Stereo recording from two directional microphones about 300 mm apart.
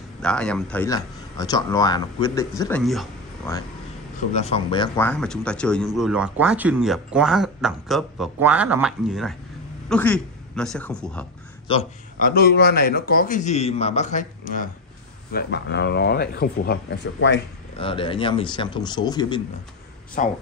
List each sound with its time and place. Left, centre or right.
0.2 s speech: centre
4.3 s a man's voice: left; by 11.2 s centre
11.6 s a man's voice: centre; by 17.4 s left
17.7 s speech: centre
20.2 s a man's voice: left